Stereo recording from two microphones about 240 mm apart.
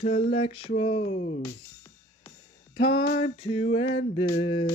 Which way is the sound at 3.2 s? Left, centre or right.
Left.